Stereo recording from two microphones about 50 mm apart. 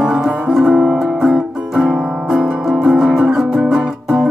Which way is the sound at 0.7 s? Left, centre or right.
Right.